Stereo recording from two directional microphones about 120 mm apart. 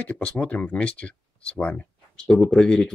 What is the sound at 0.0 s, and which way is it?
Speech, 10° left (ahead or behind).